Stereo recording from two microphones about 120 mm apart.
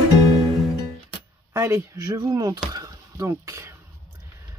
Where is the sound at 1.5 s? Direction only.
20° right (ahead or behind).